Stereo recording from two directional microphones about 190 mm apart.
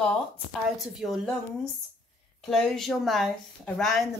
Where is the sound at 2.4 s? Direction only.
Centre (ahead or behind).